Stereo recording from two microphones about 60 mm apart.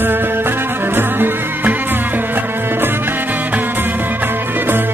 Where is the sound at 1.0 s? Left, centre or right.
Right.